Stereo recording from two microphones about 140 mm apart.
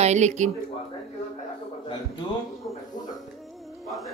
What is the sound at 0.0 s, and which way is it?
Speech, 55° right (ahead or behind).